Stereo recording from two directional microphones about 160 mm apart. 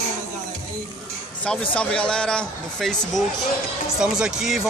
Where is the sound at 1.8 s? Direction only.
5° left (ahead or behind).